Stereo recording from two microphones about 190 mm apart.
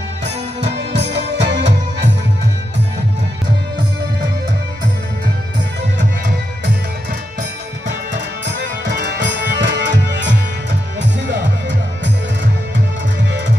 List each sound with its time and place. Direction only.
0.6 s music: 65° right (ahead or behind)
8.5 s music: 65° right (ahead or behind)